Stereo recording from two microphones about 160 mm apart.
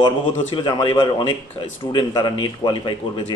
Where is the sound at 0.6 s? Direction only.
30° left (ahead or behind).